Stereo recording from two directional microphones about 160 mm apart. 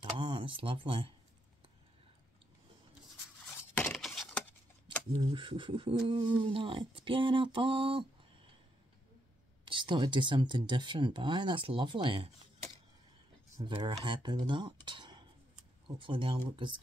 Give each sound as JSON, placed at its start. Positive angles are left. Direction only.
{"t": 0.2, "sound": "speech", "side_deg": -30}
{"t": 3.3, "sound": "a sound", "side_deg": 5}
{"t": 5.1, "sound": "speech", "side_deg": -30}
{"t": 9.7, "sound": "speech", "side_deg": -30}
{"t": 13.7, "sound": "speech", "side_deg": -35}